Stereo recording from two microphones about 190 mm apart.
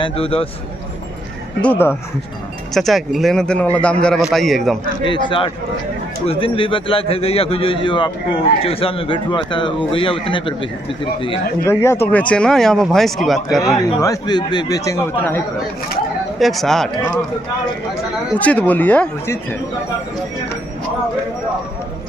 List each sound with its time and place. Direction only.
0.0 s a man's voice: 30° left (ahead or behind)
1.6 s a man's voice: 10° left (ahead or behind)
5.0 s a man's voice: 25° left (ahead or behind)
11.6 s a man's voice: 15° left (ahead or behind)
14.0 s a man's voice: 20° left (ahead or behind)
16.3 s a man's voice: centre (ahead or behind)
18.4 s speech: 5° left (ahead or behind)